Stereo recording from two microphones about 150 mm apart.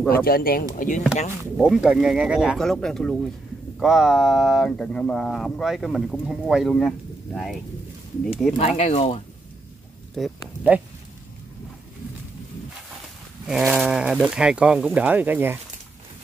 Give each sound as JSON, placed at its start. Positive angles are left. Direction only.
{"t": 0.1, "sound": "speech", "side_deg": 85}
{"t": 0.7, "sound": "speech", "side_deg": 60}
{"t": 1.6, "sound": "speech", "side_deg": -5}
{"t": 8.5, "sound": "speech", "side_deg": 45}
{"t": 10.1, "sound": "speech", "side_deg": 0}
{"t": 13.5, "sound": "speech", "side_deg": -5}